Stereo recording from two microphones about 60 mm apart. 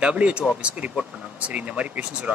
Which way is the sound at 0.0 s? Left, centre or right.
Centre.